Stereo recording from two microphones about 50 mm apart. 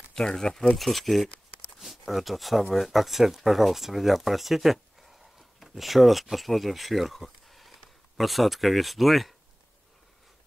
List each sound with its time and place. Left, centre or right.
0.1 s speech: centre